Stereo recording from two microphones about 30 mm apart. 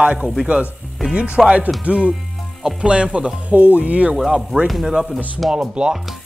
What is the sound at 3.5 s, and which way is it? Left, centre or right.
Speech, right.